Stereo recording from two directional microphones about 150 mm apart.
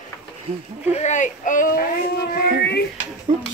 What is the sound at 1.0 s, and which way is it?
Speech, 55° left (ahead or behind).